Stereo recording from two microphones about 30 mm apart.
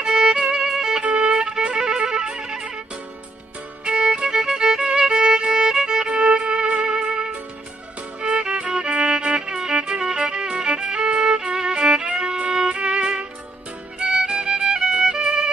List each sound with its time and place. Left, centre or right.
0.0 s violin: right
0.6 s music: centre
1.1 s violin: right
1.8 s music: right
3.8 s violin: right
8.3 s music: right
8.8 s violin: right
9.9 s music: right
11.3 s music: right
12.4 s violin: right
13.9 s music: right
15.2 s violin: right